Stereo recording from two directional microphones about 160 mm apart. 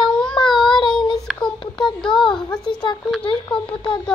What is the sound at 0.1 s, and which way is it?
Child singing, 5° left (ahead or behind).